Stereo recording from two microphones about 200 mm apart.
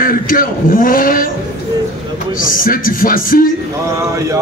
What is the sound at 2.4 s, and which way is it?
A man's voice, 45° left (ahead or behind).